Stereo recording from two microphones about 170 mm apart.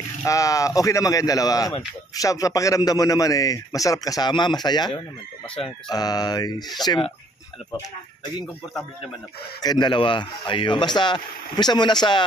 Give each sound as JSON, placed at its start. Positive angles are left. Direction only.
{"t": 0.2, "sound": "speech", "side_deg": 20}
{"t": 9.6, "sound": "speech", "side_deg": 25}